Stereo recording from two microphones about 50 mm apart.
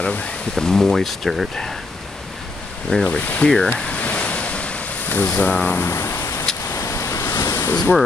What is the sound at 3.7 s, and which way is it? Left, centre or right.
Ocean, left.